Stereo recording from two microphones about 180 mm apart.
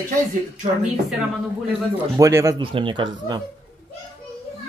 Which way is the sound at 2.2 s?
15° right (ahead or behind).